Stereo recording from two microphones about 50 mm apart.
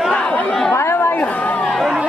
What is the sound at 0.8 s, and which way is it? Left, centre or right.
Chatter, left.